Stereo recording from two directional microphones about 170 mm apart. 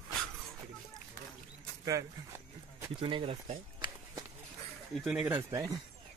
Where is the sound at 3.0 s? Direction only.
30° right (ahead or behind).